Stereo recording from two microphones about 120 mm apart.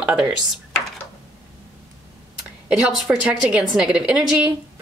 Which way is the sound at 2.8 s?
5° right (ahead or behind).